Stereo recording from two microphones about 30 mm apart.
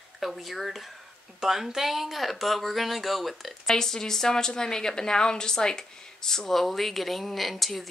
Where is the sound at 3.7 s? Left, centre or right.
Centre.